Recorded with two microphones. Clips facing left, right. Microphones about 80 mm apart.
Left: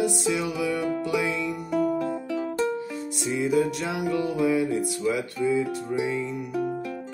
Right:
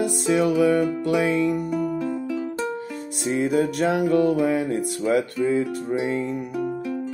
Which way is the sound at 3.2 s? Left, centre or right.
Right.